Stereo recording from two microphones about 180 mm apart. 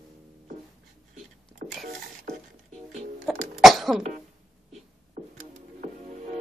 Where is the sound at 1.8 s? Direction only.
50° right (ahead or behind).